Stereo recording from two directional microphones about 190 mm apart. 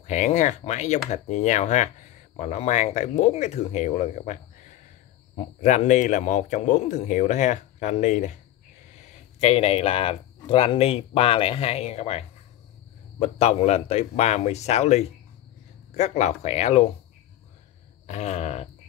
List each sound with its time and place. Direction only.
0.0 s speech: 40° left (ahead or behind)
18.0 s speech: 35° left (ahead or behind)